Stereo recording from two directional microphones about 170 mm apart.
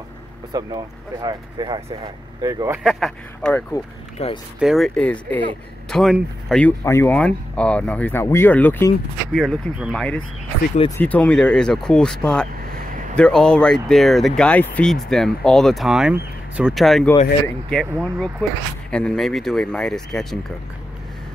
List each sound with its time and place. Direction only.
0.5 s speech: 20° right (ahead or behind)
2.8 s speech: centre (ahead or behind)
4.2 s speech: 40° left (ahead or behind)
4.6 s speech: centre (ahead or behind)
6.6 s speech: 15° left (ahead or behind)
9.3 s speech: centre (ahead or behind)